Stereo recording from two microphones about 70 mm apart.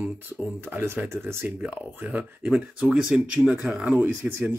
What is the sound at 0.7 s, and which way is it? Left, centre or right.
Speech, right.